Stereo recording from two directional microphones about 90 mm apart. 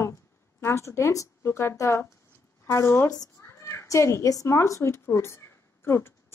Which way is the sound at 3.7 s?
35° left (ahead or behind).